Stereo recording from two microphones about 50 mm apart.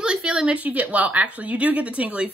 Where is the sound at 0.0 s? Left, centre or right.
Centre.